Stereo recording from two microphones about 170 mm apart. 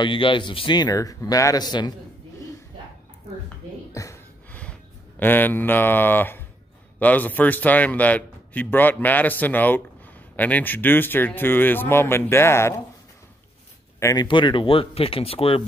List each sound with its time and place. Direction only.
0.0 s speech: 30° left (ahead or behind)
3.9 s a sound: 20° left (ahead or behind)
5.2 s speech: 10° left (ahead or behind)
13.9 s speech: 20° left (ahead or behind)
14.2 s speech: 30° left (ahead or behind)